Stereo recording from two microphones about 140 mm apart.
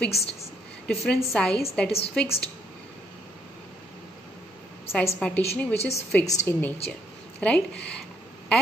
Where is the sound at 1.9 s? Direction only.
45° left (ahead or behind).